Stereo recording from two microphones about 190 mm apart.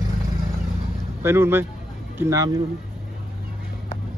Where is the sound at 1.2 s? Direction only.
15° right (ahead or behind).